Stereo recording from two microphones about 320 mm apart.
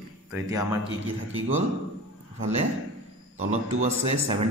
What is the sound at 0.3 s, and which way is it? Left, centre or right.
Speech, centre.